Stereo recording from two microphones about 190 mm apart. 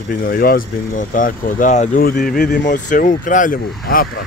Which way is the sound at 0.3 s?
50° left (ahead or behind).